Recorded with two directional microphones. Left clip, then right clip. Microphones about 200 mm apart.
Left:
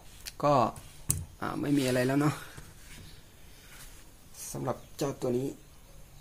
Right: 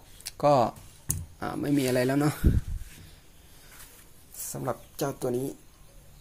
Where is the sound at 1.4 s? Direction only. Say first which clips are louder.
Right 2 dB; 15° right (ahead or behind).